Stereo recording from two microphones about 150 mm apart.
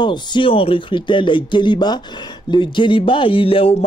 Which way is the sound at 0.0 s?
30° left (ahead or behind).